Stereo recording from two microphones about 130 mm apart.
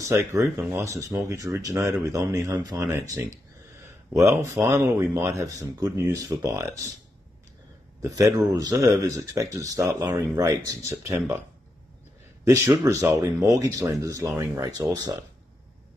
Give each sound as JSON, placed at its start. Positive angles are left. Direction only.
{"t": 0.1, "sound": "speech", "side_deg": -20}
{"t": 2.9, "sound": "speech", "side_deg": -20}
{"t": 8.0, "sound": "speech", "side_deg": -25}
{"t": 12.4, "sound": "speech", "side_deg": -25}